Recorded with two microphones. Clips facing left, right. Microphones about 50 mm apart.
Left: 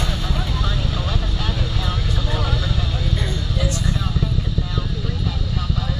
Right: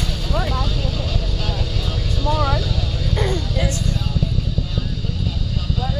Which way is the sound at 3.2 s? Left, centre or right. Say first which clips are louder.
Right 4 dB; right.